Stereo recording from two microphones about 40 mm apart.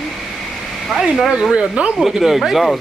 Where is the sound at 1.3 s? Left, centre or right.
Centre.